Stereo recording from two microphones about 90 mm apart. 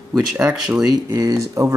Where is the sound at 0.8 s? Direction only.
45° right (ahead or behind).